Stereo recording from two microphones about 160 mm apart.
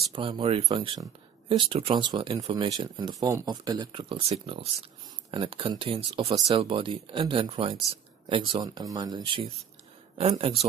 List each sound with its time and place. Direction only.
0.1 s speech: 30° right (ahead or behind)